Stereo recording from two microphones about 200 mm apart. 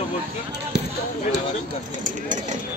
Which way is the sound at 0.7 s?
55° right (ahead or behind).